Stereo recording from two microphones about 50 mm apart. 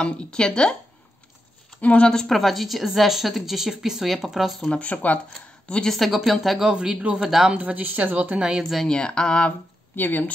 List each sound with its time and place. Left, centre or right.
0.0 s speech: centre
1.8 s speech: left
2.1 s a woman's voice: centre
4.6 s speech: left
5.9 s a woman's voice: centre
6.6 s speech: centre
7.2 s speech: centre
7.5 s a woman's voice: right
8.4 s speech: centre
8.8 s speech: centre
9.9 s speech: left